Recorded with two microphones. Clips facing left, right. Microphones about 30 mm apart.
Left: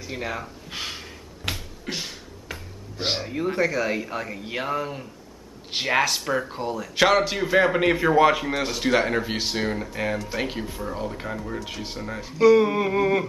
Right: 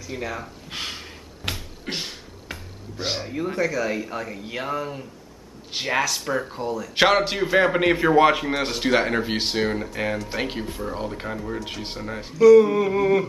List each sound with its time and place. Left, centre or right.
0.1 s speech: centre
0.7 s a sound: centre
1.9 s beatboxing: centre
3.2 s speech: centre
7.0 s a man's voice: centre
12.4 s a sound: left